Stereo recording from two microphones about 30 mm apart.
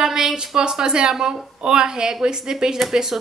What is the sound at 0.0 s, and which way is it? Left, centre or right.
A woman's voice, centre.